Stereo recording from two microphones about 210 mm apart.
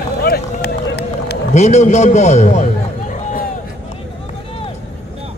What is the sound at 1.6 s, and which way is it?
A man's voice, 35° left (ahead or behind).